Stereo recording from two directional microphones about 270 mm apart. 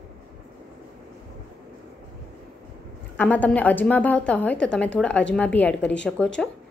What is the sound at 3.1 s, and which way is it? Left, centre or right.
A woman's voice, centre.